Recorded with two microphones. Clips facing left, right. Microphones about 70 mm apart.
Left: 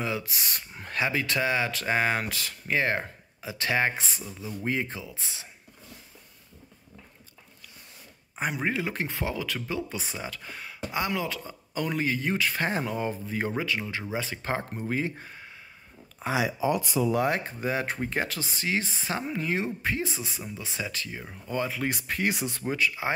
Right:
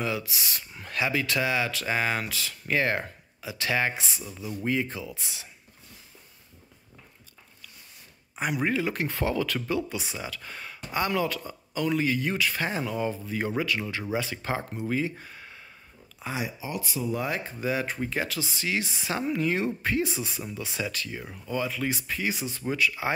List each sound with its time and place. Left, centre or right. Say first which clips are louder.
0.2 s speech: even; left
2.7 s speech: even; centre
3.4 s speech: left 1 dB; left
8.4 s speech: right 2 dB; left
9.9 s speech: right 1 dB; left
10.4 s speech: left 2 dB; centre
11.7 s speech: right 2 dB; left; by 14.0 s centre
14.2 s speech: even; left
16.2 s speech: left 7 dB; left
19.1 s speech: right 3 dB; left
21.5 s speech: even; left
21.8 s speech: left 1 dB; left
22.7 s speech: right 1 dB; left